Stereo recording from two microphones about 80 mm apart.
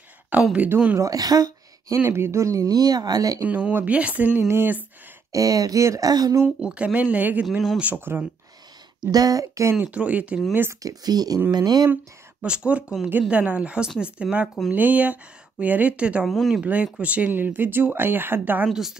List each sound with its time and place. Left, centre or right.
0.3 s speech: centre
0.9 s a woman's voice: right
2.0 s speech: right
3.4 s speech: centre
5.3 s speech: right
6.6 s speech: centre
9.1 s speech: right
9.8 s speech: centre
10.7 s speech: right
11.9 s speech: centre
16.3 s speech: centre
16.6 s speech: centre
18.7 s speech: centre